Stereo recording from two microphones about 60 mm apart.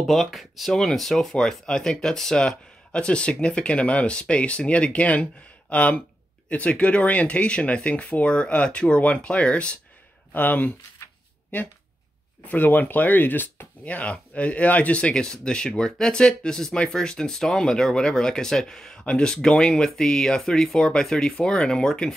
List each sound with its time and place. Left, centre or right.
0.0 s speech: centre
10.3 s speech: left
12.4 s speech: left; by 22.1 s centre